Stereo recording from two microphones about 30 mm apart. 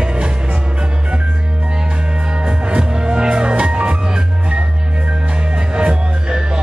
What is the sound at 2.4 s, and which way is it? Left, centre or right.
Music, right.